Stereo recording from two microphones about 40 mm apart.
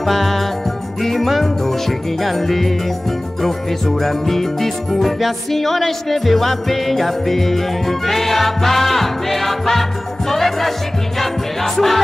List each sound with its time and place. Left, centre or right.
0.0 s music: centre